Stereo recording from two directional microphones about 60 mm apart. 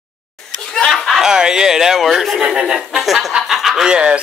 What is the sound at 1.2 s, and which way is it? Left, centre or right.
Speech, centre.